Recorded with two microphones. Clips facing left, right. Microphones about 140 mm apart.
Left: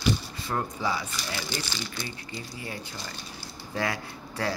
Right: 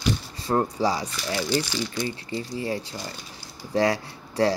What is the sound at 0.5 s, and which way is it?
Speech, 35° right (ahead or behind).